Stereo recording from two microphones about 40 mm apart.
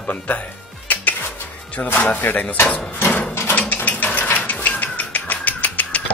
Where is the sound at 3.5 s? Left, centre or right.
Left.